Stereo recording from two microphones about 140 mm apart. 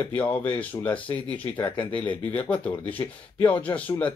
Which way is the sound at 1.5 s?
35° left (ahead or behind).